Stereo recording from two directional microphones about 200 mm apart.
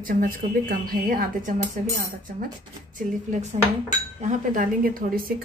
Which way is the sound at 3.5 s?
30° right (ahead or behind).